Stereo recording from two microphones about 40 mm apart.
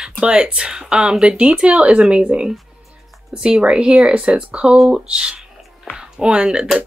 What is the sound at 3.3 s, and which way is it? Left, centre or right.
Speech, right.